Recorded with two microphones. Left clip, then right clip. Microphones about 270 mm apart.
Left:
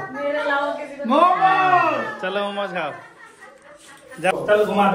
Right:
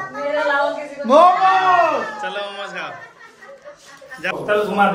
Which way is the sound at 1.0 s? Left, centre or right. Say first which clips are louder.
Right 5 dB; right.